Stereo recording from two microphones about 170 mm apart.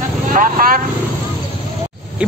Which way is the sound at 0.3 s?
55° right (ahead or behind).